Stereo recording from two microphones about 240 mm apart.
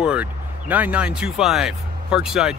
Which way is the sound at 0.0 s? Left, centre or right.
Centre.